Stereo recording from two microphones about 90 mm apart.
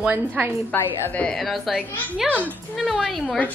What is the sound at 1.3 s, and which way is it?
Speech, centre (ahead or behind).